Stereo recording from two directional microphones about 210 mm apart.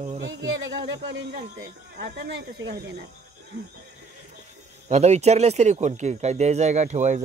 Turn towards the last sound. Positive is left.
turn(degrees=-35)  # may be behind; listen again after turning